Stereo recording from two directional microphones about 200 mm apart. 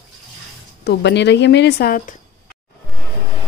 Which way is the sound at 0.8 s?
60° left (ahead or behind).